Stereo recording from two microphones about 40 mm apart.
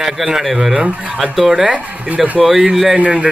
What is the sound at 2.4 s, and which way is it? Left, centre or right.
Speech, centre.